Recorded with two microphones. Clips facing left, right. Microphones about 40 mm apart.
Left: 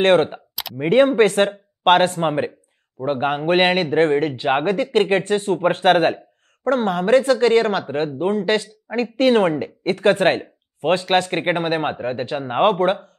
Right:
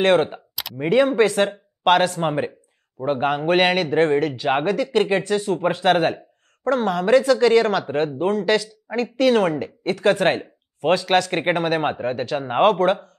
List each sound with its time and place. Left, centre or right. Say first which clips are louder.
0.0 s speech: left 2 dB; left; by 4.2 s centre
4.2 s speech: left 1 dB; left
10.4 s a sound: even; centre
11.3 s speech: even; centre